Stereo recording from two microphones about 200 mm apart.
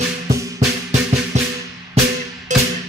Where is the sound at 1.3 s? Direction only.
35° right (ahead or behind).